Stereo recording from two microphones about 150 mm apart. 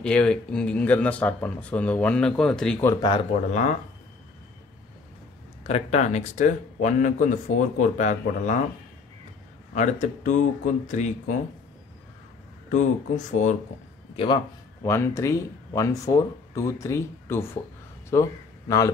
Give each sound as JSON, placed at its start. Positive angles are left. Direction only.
{"t": 0.0, "sound": "speech", "side_deg": 5}
{"t": 2.9, "sound": "speech", "side_deg": 30}
{"t": 5.6, "sound": "a man's voice", "side_deg": 45}
{"t": 9.8, "sound": "a man's voice", "side_deg": 55}
{"t": 12.7, "sound": "speech", "side_deg": 55}
{"t": 14.1, "sound": "a man's voice", "side_deg": 35}
{"t": 14.8, "sound": "speech", "side_deg": 20}